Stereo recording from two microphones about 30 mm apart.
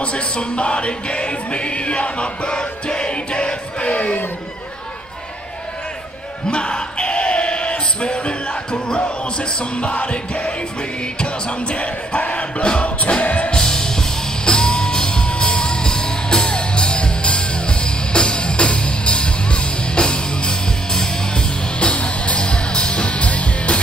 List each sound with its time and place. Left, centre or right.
0.0 s music: left
6.5 s a sound: left
11.1 s music: left
13.6 s music: left
21.9 s music: left